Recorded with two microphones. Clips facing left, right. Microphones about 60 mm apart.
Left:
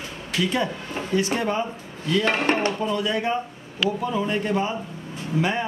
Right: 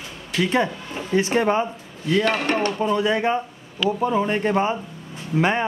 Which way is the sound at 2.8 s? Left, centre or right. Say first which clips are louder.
Right 4 dB; right.